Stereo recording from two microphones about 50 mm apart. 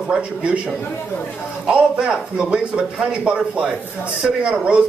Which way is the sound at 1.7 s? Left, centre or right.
Centre.